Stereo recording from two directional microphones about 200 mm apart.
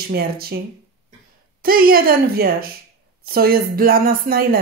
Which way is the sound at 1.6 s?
50° right (ahead or behind).